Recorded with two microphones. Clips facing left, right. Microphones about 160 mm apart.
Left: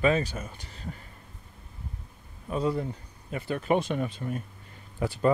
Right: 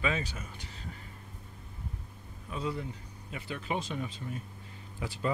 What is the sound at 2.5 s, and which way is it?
Speech, 45° left (ahead or behind).